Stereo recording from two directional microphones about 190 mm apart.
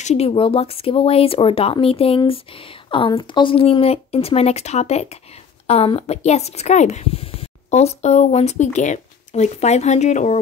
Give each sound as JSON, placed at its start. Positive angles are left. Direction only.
{"t": 0.0, "sound": "speech", "side_deg": 35}